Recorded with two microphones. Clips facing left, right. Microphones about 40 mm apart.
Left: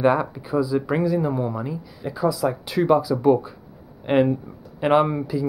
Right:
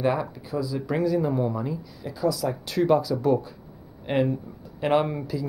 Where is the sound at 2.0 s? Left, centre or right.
Left.